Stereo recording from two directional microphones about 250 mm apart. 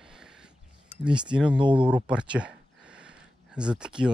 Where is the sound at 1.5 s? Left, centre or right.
Centre.